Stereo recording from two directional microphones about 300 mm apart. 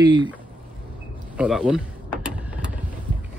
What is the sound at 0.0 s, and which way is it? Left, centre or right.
Speech, centre.